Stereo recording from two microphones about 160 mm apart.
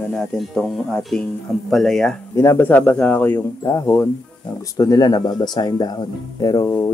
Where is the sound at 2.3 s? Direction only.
15° left (ahead or behind).